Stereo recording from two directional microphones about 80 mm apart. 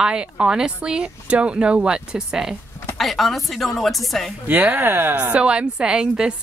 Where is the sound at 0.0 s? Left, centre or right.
Centre.